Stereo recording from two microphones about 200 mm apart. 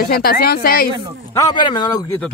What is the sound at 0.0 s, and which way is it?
Speech, 50° left (ahead or behind).